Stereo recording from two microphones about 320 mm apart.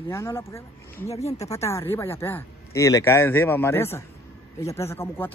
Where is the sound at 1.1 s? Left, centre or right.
Centre.